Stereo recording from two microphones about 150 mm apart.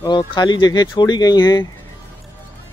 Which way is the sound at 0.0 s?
25° left (ahead or behind).